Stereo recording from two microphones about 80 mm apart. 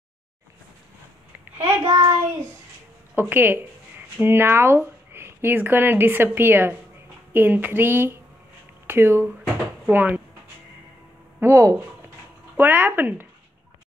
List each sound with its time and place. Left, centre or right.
1.4 s child singing: right
1.8 s child singing: right
3.2 s speech: right
11.4 s speech: right
12.5 s speech: right